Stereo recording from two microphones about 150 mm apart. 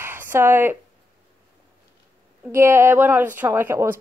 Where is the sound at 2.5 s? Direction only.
15° right (ahead or behind).